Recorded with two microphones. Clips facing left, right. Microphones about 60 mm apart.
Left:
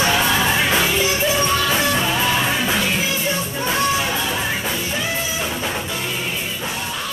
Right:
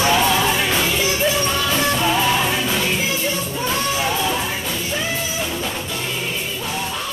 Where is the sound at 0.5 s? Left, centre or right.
Centre.